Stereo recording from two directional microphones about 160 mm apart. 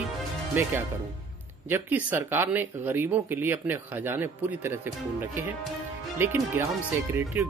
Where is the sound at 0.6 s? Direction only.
10° right (ahead or behind).